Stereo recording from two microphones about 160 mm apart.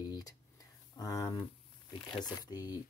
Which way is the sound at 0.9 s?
20° left (ahead or behind).